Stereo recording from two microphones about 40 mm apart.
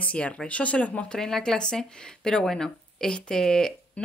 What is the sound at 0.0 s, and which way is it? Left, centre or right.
A woman's voice, left.